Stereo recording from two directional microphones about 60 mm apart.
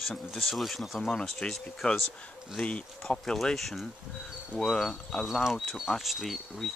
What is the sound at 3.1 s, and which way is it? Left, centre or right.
Speech, centre.